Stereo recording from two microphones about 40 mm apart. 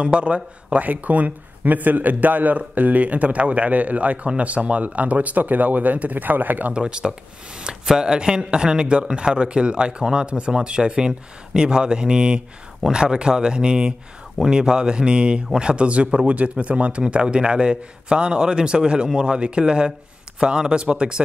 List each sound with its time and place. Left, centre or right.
0.0 s speech: right
6.7 s speech: right